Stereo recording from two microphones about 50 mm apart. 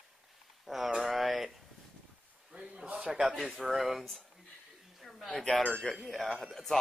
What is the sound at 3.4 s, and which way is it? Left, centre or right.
Speech, centre.